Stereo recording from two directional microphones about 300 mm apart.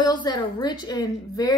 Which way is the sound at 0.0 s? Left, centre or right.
Centre.